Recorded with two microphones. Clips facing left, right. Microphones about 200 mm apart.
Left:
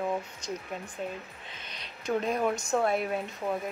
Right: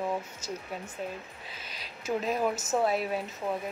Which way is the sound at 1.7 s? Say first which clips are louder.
Left 1 dB; 5° right (ahead or behind).